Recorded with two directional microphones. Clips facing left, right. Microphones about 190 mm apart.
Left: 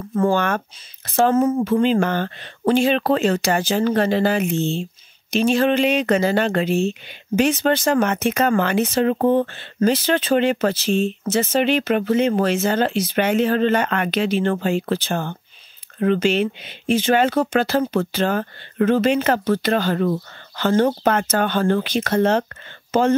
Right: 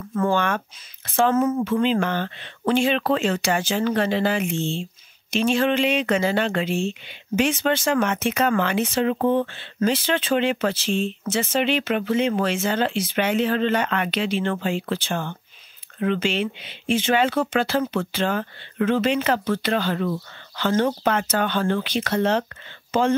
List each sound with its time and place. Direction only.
0.1 s speech: 35° left (ahead or behind)